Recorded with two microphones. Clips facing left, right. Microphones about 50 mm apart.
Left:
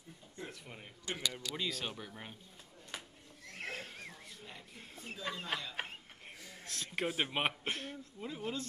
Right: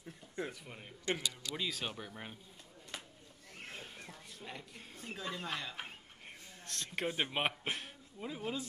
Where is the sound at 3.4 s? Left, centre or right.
Left.